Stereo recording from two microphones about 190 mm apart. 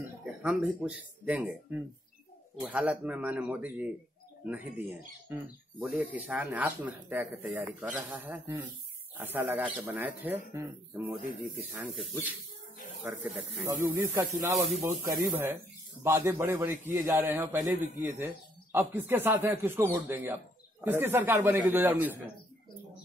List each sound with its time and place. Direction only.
0.2 s a man's voice: 5° right (ahead or behind)
14.5 s speech: centre (ahead or behind)
16.0 s a man's voice: 10° right (ahead or behind)